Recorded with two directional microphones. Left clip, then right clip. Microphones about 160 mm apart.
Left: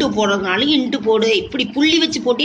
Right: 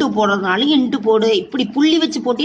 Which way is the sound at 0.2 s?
60° right (ahead or behind).